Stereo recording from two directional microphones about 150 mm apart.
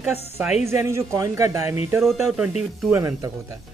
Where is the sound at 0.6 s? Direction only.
15° right (ahead or behind).